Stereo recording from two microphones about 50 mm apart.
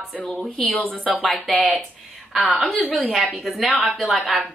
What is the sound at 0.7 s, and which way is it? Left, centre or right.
Speech, left.